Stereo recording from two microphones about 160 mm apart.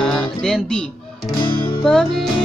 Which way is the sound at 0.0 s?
5° left (ahead or behind).